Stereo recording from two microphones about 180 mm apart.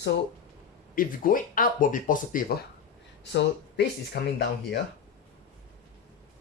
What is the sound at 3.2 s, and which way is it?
Speech, 75° left (ahead or behind).